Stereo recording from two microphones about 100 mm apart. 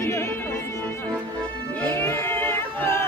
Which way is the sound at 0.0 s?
25° left (ahead or behind).